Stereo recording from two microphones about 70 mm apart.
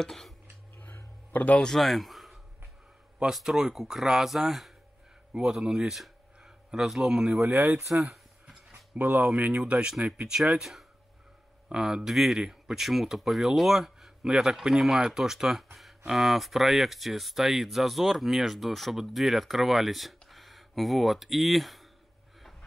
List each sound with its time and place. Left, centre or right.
0.0 s speech: centre
1.3 s speech: left
1.6 s speech: centre
7.4 s speech: right
7.9 s a sound: centre
8.9 s speech: right; by 21.8 s centre